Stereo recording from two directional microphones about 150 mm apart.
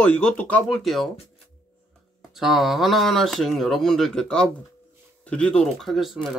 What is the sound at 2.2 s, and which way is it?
Speech, centre (ahead or behind).